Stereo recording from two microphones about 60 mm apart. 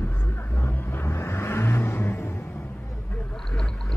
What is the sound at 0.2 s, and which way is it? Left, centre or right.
Vehicle, left.